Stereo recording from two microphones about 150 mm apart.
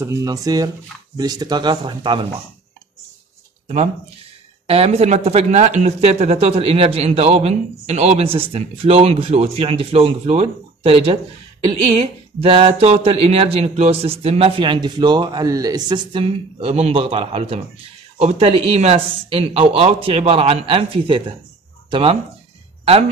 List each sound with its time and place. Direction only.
0.0 s speech: 20° right (ahead or behind)
3.6 s speech: 45° right (ahead or behind)